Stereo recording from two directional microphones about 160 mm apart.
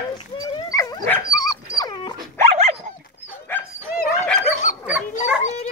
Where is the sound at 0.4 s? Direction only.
20° left (ahead or behind).